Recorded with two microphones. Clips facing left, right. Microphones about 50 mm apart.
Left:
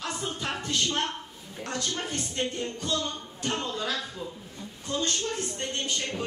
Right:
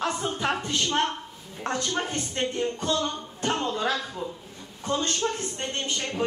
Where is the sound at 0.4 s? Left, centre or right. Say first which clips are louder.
Right 2 dB; right.